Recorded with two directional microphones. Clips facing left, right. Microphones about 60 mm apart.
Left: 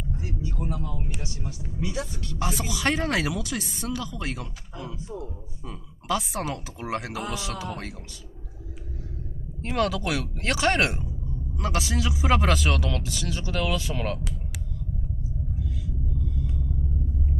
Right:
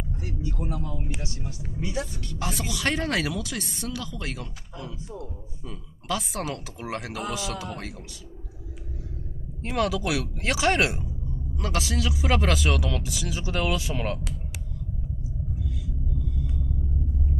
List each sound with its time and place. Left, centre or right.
0.6 s speech: centre
1.5 s speech: right
2.3 s speech: centre
4.7 s a woman's voice: centre
9.6 s speech: centre
15.6 s rumble: centre